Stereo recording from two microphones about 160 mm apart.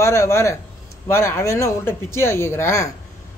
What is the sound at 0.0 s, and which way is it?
A man's voice, 20° left (ahead or behind).